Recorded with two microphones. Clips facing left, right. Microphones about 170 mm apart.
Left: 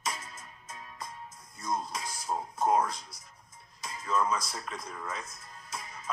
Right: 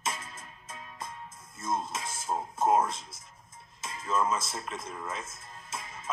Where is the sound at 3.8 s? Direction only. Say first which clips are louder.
Right 1 dB; 25° right (ahead or behind).